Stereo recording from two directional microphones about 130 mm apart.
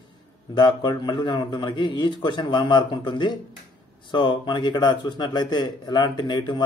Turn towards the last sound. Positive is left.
turn(degrees=35)  # may be behind; listen again after turning